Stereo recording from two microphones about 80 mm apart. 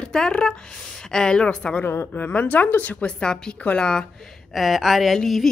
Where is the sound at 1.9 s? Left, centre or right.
Left; by 4.0 s centre.